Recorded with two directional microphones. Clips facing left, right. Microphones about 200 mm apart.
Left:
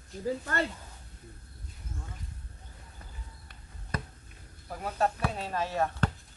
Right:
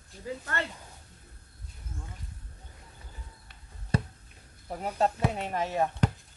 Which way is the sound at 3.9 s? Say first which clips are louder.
Right 7 dB; 30° right (ahead or behind).